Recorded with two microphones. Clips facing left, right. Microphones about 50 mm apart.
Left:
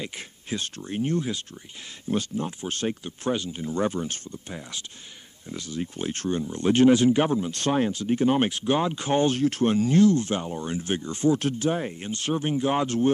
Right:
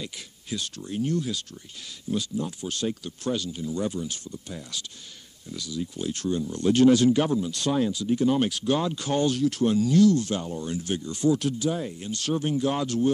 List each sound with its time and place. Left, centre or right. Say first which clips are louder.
0.0 s speech: left 3 dB; left
12.1 s speech: even; left